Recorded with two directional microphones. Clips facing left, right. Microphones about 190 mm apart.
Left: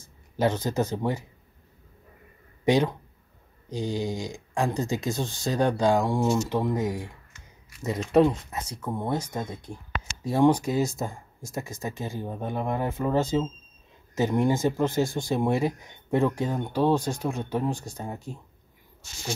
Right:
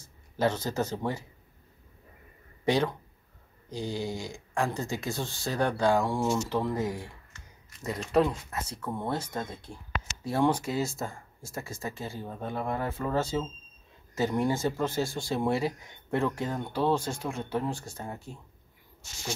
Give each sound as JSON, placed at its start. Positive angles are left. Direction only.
{"t": 0.0, "sound": "speech", "side_deg": 15}
{"t": 2.6, "sound": "a man's voice", "side_deg": 15}
{"t": 8.1, "sound": "a man's voice", "side_deg": 20}